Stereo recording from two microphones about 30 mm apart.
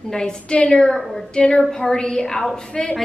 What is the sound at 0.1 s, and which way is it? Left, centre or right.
A woman's voice, left.